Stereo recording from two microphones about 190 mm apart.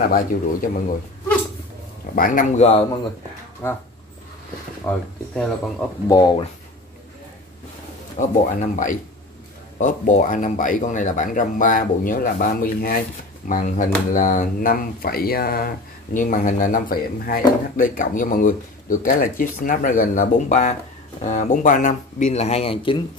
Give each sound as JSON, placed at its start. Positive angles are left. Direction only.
{"t": 0.0, "sound": "speech", "side_deg": 45}
{"t": 2.1, "sound": "speech", "side_deg": 45}
{"t": 4.8, "sound": "speech", "side_deg": 5}
{"t": 6.0, "sound": "speech", "side_deg": 20}
{"t": 8.2, "sound": "speech", "side_deg": 40}